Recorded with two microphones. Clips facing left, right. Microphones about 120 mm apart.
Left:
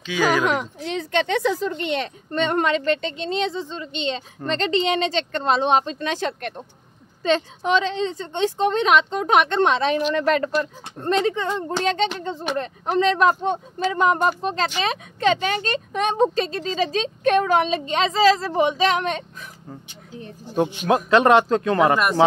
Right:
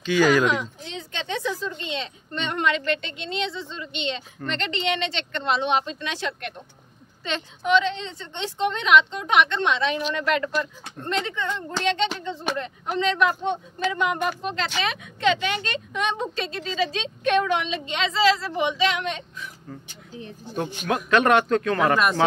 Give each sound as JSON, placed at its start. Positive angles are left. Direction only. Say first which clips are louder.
{"t": 0.0, "sound": "speech", "louder": "right 2 dB", "side_deg": 0}
{"t": 0.5, "sound": "speech", "louder": "left 3 dB", "side_deg": 60}
{"t": 2.3, "sound": "speech", "louder": "left 5 dB", "side_deg": 40}
{"t": 20.8, "sound": "speech", "louder": "left 3 dB", "side_deg": 25}
{"t": 21.9, "sound": "speech", "louder": "left 1 dB", "side_deg": 10}